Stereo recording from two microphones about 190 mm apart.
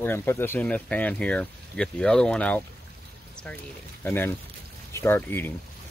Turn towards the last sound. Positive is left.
turn(degrees=10)  # may be behind; listen again after turning